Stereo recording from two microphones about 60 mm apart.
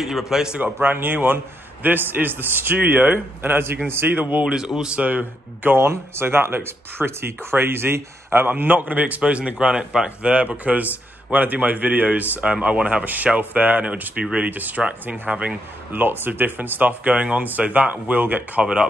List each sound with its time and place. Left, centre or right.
0.0 s a man's voice: centre
0.7 s a man's voice: right
4.5 s speech: centre
15.9 s speech: right